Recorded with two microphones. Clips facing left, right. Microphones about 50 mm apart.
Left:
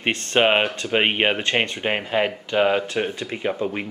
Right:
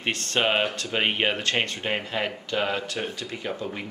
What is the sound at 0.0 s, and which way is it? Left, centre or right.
Speech, left.